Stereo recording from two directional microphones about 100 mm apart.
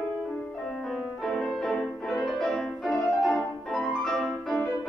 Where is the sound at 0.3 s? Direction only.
10° left (ahead or behind).